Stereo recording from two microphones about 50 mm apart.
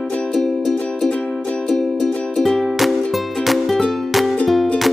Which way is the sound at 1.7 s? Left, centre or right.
Centre.